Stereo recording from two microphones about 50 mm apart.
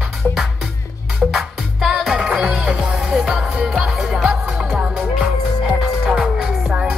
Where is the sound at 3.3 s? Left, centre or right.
Centre.